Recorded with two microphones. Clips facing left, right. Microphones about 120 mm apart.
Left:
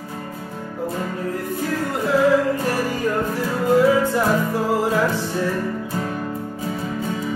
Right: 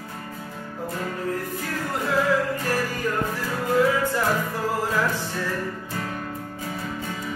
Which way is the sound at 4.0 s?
20° left (ahead or behind).